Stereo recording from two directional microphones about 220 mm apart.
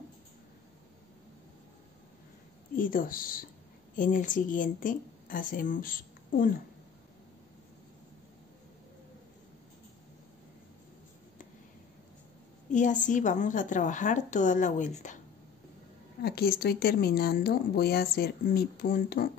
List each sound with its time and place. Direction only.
2.7 s a woman's voice: 40° left (ahead or behind)
12.7 s a woman's voice: 35° left (ahead or behind)
16.2 s speech: 45° left (ahead or behind)